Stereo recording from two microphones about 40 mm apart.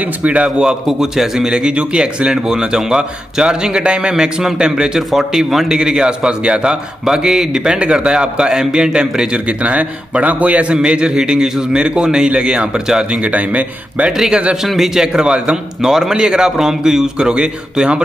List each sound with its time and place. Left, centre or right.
0.0 s a man's voice: right
0.8 s a man's voice: centre
1.5 s a man's voice: right
4.1 s a man's voice: centre
9.5 s a man's voice: right
10.7 s a man's voice: right
13.1 s a man's voice: right
14.3 s a man's voice: right